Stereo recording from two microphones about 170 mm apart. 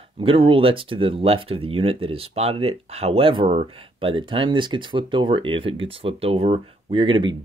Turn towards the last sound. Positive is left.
turn(degrees=-30)  # may be behind; listen again after turning